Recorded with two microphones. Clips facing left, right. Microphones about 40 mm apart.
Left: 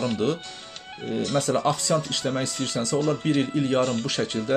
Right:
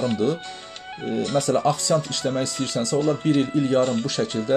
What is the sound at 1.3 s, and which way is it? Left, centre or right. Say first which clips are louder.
Music: right 2 dB; left.